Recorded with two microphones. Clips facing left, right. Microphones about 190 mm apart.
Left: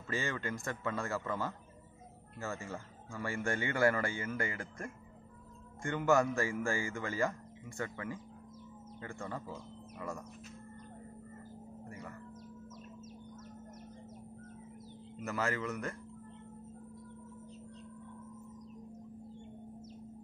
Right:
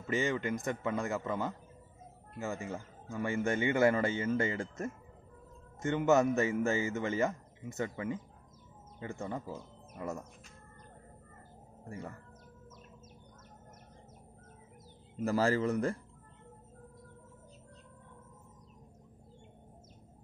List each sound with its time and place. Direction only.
0.0 s a man's voice: 20° right (ahead or behind)
15.1 s a man's voice: 35° right (ahead or behind)